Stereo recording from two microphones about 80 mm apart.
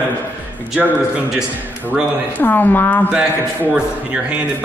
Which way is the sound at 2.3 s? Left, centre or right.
Left.